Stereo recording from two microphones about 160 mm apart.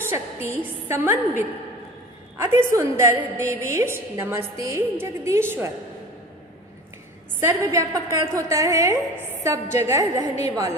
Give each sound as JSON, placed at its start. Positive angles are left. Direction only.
{"t": 0.0, "sound": "a woman's voice", "side_deg": -15}
{"t": 7.3, "sound": "a woman's voice", "side_deg": -15}
{"t": 9.3, "sound": "a sound", "side_deg": -15}
{"t": 9.8, "sound": "a woman's voice", "side_deg": -20}